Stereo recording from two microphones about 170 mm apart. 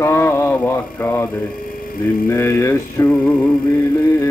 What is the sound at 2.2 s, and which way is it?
Mantra, 15° left (ahead or behind).